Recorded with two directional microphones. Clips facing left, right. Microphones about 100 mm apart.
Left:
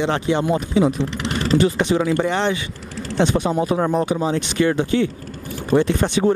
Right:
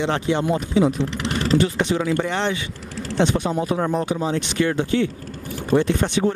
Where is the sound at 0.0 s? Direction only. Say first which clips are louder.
Left 2 dB; 15° left (ahead or behind).